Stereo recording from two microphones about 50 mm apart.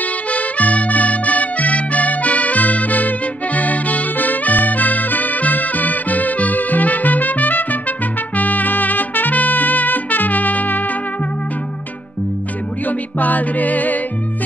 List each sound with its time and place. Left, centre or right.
0.3 s music: left
12.8 s music: left